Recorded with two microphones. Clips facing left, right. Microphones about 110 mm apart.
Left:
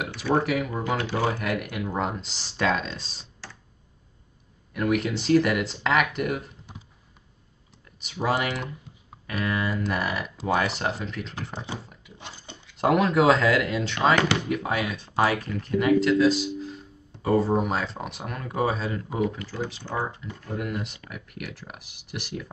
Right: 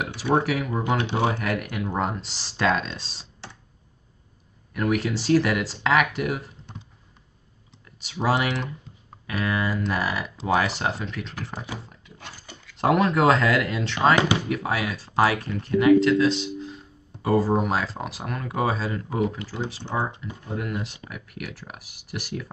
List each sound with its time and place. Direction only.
0.4 s speech: centre (ahead or behind)
0.7 s speech: 20° right (ahead or behind)
1.4 s speech: centre (ahead or behind)
4.7 s speech: centre (ahead or behind)
8.0 s speech: centre (ahead or behind)
11.5 s speech: 30° left (ahead or behind)
12.2 s a sound: 20° left (ahead or behind)
12.7 s speech: centre (ahead or behind)
19.8 s speech: 25° right (ahead or behind)
20.5 s speech: centre (ahead or behind)